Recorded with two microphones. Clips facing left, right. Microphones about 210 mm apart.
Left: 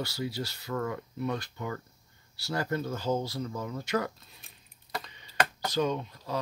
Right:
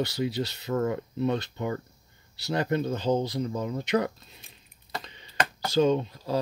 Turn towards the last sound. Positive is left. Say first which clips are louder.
# right 7 dB
turn(degrees=-30)  # may be behind; listen again after turning